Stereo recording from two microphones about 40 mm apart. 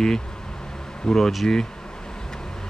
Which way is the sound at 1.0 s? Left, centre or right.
Centre.